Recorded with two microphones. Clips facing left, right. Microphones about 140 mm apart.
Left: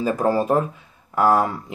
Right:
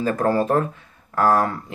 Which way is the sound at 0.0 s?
10° left (ahead or behind).